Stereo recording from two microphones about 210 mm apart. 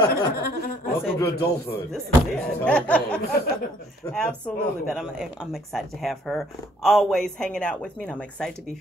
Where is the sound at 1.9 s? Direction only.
5° left (ahead or behind).